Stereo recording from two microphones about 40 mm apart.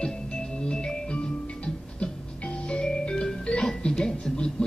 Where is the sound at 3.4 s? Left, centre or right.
Left.